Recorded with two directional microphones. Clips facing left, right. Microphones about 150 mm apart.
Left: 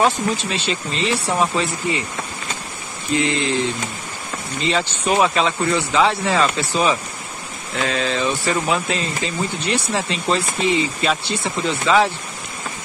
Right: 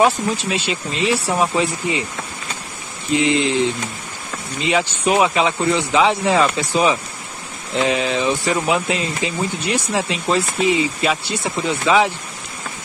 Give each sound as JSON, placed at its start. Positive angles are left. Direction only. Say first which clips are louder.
{"t": 0.0, "sound": "speech", "louder": "right 2 dB", "side_deg": -10}
{"t": 3.1, "sound": "speech", "louder": "right 3 dB", "side_deg": -20}
{"t": 4.6, "sound": "speech", "louder": "right 2 dB", "side_deg": -10}